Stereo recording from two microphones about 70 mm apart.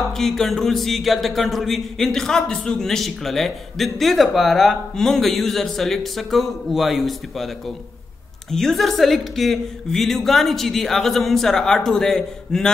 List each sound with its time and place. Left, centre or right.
0.1 s speech: centre